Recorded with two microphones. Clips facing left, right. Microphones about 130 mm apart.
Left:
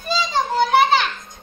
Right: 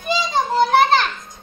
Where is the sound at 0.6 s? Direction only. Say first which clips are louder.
Right 1 dB; 40° right (ahead or behind).